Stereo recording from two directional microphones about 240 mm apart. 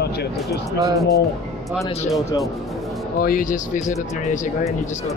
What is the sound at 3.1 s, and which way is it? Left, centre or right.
Speech, left.